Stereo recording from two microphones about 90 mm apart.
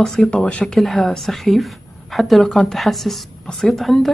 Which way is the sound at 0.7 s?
Centre (ahead or behind).